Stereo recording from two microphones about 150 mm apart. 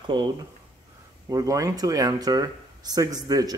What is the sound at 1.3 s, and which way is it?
Speech, 20° right (ahead or behind).